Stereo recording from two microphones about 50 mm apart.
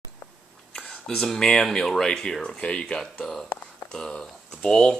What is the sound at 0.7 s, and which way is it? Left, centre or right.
Speech, centre.